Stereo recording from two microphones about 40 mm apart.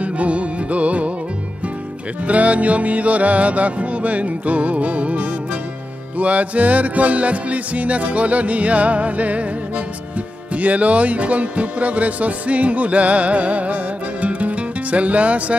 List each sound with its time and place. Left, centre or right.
0.0 s music: right
2.2 s music: right
10.5 s music: right